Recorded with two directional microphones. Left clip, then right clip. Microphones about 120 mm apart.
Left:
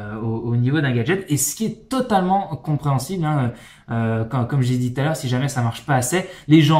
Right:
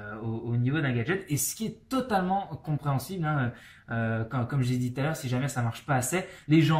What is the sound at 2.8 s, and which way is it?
Speech, 5° right (ahead or behind).